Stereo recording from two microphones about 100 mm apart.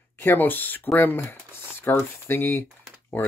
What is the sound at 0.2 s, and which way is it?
Speech, 20° left (ahead or behind).